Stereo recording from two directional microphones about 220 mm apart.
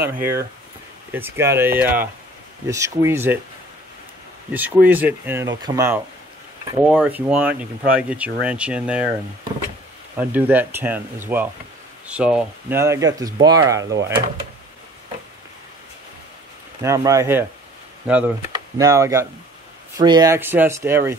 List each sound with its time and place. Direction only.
0.2 s speech: 10° right (ahead or behind)
4.5 s speech: 5° right (ahead or behind)
10.1 s speech: 5° right (ahead or behind)
16.8 s speech: 15° right (ahead or behind)